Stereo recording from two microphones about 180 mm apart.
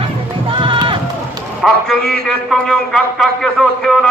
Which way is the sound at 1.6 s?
Centre (ahead or behind).